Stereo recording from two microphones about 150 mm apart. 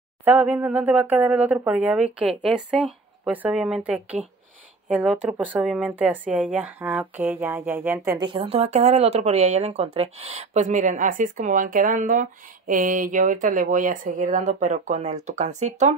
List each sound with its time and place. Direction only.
0.2 s speech: 10° right (ahead or behind)
8.2 s speech: 35° right (ahead or behind); by 16.0 s 50° right (ahead or behind)